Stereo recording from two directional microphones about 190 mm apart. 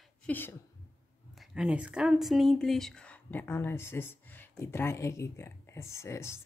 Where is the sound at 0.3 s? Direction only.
10° left (ahead or behind).